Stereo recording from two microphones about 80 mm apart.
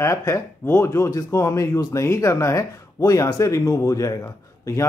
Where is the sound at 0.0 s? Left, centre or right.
Left.